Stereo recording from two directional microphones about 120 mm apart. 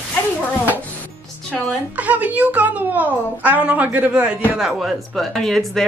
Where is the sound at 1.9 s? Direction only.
10° right (ahead or behind).